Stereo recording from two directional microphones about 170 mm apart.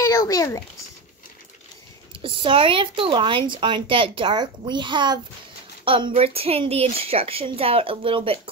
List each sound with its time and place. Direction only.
0.0 s a child's voice: 20° left (ahead or behind)
2.2 s a woman's voice: 30° right (ahead or behind)